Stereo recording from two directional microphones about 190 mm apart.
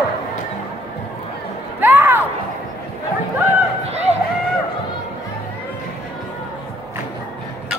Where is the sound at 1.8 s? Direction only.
10° right (ahead or behind).